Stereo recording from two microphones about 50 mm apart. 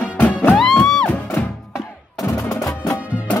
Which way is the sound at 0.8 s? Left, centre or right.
Centre.